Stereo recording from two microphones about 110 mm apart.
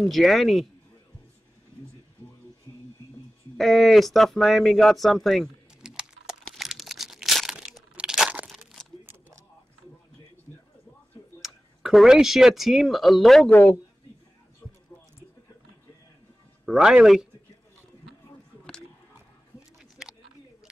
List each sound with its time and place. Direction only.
0.1 s speech: centre (ahead or behind)
3.5 s speech: centre (ahead or behind)
6.4 s crumpling: centre (ahead or behind)
8.5 s a sound: centre (ahead or behind)
11.4 s speech: 5° right (ahead or behind)
13.5 s speech: 15° left (ahead or behind)
16.6 s speech: 5° right (ahead or behind)
20.0 s a sound: 5° right (ahead or behind)